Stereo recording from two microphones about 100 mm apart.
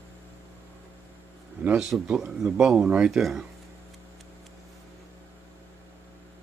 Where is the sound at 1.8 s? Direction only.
5° right (ahead or behind).